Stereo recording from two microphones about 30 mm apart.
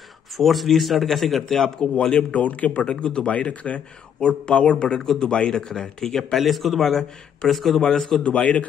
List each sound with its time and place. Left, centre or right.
0.4 s a man's voice: centre
1.8 s a man's voice: left
2.3 s a man's voice: left
2.9 s a man's voice: left
3.4 s a man's voice: left
4.2 s speech: left
5.7 s speech: centre
6.3 s a man's voice: centre
7.8 s speech: centre
8.2 s a man's voice: left